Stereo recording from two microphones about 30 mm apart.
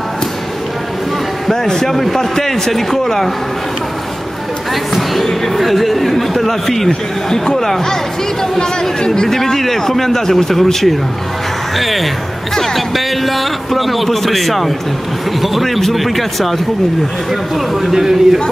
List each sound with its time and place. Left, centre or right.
1.5 s speech: centre
1.9 s speech: centre
4.9 s speech: centre; by 9.3 s left
9.3 s a man's voice: centre
17.9 s a man's voice: centre